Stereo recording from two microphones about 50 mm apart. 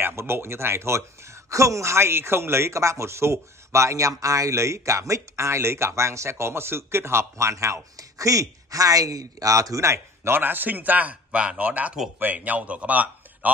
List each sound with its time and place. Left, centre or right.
0.0 s speech: right
9.5 s speech: right
10.3 s a man's voice: right
11.3 s speech: right